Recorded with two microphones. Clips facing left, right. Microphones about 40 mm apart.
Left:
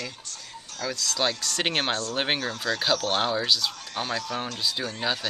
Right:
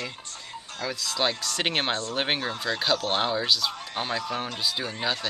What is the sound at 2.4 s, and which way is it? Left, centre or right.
Speech, centre.